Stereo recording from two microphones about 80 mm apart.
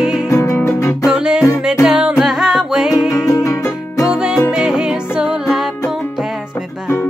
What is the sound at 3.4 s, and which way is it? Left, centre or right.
Music, left.